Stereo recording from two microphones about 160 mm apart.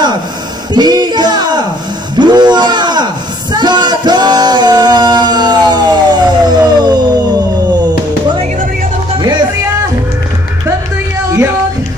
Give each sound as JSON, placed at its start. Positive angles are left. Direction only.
{"t": 0.7, "sound": "speech", "side_deg": -25}
{"t": 2.1, "sound": "a sound", "side_deg": -25}
{"t": 3.5, "sound": "music", "side_deg": -25}